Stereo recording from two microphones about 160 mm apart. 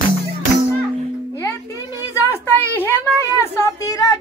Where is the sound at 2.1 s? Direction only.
15° left (ahead or behind).